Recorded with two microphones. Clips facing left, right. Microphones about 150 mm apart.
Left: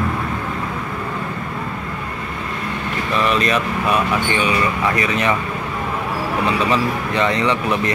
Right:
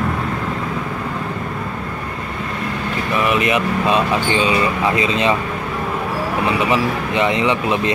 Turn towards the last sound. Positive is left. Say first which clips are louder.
# right 1 dB
turn(degrees=-20)  # may be behind; listen again after turning